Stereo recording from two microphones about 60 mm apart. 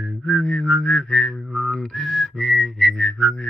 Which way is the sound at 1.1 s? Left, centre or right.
Centre.